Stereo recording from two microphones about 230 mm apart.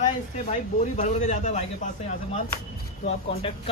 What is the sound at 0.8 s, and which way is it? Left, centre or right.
A man's voice, left.